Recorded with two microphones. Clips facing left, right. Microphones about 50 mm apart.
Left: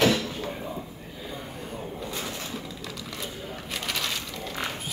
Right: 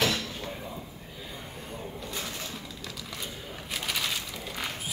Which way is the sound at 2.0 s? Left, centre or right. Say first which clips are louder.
Left 2 dB; centre.